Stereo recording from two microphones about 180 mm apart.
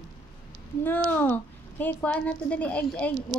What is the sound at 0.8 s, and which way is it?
A woman's voice, 10° left (ahead or behind).